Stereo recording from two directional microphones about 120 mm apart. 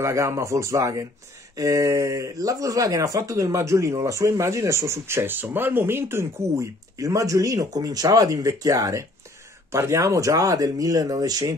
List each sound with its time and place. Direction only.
0.0 s speech: 25° right (ahead or behind)